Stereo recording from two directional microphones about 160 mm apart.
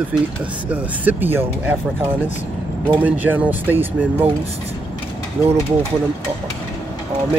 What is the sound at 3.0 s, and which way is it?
Speech, 10° right (ahead or behind).